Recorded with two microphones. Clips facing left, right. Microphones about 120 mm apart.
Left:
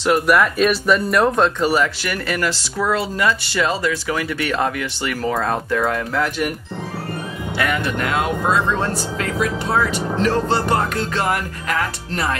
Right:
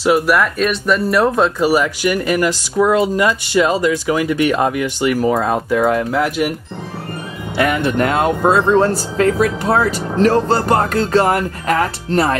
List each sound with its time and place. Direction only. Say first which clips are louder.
0.0 s speech: right 2 dB; centre (ahead or behind)
7.5 s speech: right 6 dB; 25° right (ahead or behind)
9.9 s speech: right 3 dB; centre (ahead or behind)
10.2 s speech: right 6 dB; 40° right (ahead or behind)